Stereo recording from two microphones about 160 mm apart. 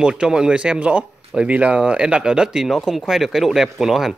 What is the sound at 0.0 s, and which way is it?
Speech, 5° right (ahead or behind).